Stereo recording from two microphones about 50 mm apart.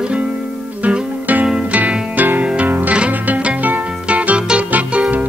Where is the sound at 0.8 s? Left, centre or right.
Right.